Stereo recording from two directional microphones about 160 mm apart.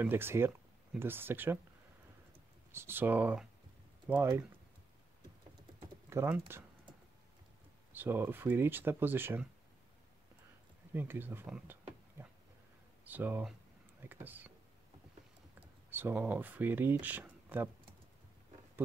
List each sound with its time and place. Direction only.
0.0 s speech: 15° right (ahead or behind)
2.7 s speech: 15° right (ahead or behind)
6.0 s speech: 15° right (ahead or behind)
7.9 s speech: 10° right (ahead or behind)
10.9 s speech: 15° right (ahead or behind)
13.0 s speech: 10° right (ahead or behind)
15.9 s speech: 10° right (ahead or behind)